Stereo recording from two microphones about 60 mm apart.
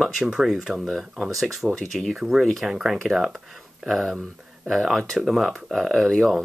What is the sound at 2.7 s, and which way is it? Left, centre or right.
Speech, centre.